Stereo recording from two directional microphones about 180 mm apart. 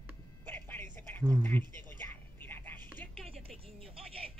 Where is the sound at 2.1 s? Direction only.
10° left (ahead or behind).